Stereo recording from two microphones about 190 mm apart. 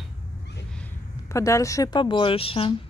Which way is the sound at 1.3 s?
15° left (ahead or behind).